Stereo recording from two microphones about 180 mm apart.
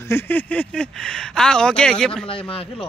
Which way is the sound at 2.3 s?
30° left (ahead or behind).